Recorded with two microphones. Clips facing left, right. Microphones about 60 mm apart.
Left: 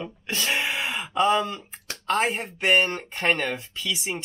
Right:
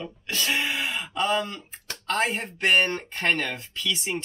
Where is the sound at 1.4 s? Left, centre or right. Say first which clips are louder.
Left 3 dB; centre.